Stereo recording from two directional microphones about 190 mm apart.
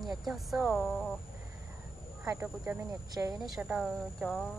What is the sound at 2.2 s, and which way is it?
Speech, 15° right (ahead or behind).